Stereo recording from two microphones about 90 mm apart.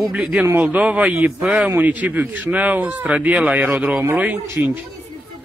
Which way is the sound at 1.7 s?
20° right (ahead or behind).